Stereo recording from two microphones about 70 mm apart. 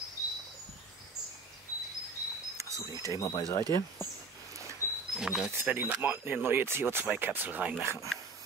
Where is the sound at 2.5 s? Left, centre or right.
Right.